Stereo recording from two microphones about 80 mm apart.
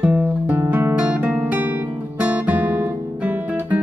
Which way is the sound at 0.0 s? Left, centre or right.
Right.